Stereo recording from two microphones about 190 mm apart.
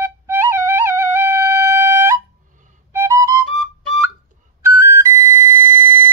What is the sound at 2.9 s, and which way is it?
Flute, 15° right (ahead or behind).